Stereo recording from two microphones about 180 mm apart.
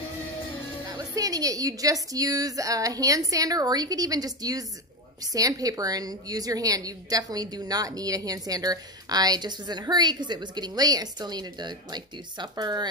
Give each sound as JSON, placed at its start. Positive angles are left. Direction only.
{"t": 0.8, "sound": "a woman's voice", "side_deg": -20}